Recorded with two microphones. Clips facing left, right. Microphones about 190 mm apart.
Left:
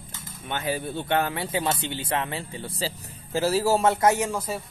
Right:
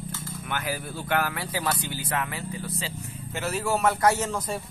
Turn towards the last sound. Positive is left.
turn(degrees=15)  # may be behind; listen again after turning